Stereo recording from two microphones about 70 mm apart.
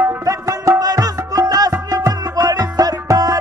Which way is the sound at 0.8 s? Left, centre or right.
Right.